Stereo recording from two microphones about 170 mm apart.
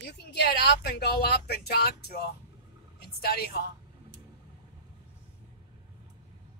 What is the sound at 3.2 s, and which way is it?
Speech, 65° left (ahead or behind).